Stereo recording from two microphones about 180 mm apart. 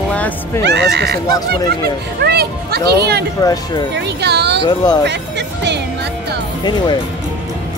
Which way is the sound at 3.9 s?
70° right (ahead or behind).